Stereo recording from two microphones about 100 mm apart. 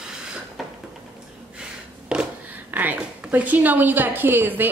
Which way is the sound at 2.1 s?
15° right (ahead or behind).